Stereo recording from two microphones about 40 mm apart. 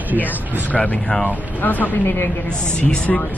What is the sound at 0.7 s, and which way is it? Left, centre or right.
Speech, left.